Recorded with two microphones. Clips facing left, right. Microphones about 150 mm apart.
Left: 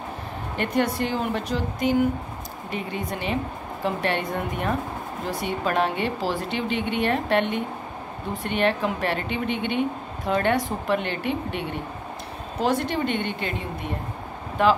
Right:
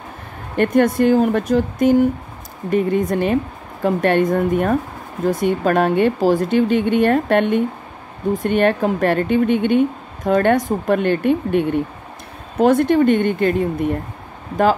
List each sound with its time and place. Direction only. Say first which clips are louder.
0.6 s speech: right 9 dB; 50° right (ahead or behind)
14.6 s speech: right 4 dB; 45° right (ahead or behind)